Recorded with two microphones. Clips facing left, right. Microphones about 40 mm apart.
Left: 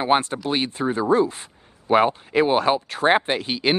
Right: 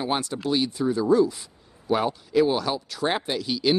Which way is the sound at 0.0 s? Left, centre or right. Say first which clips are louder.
Left 6 dB; left.